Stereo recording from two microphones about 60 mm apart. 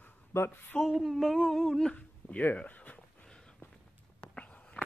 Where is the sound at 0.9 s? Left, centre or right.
Centre.